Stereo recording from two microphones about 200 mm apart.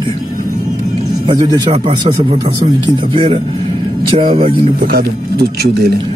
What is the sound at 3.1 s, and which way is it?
A man's voice, 25° right (ahead or behind).